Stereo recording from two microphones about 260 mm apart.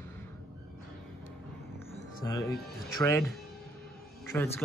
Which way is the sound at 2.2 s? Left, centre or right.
Centre.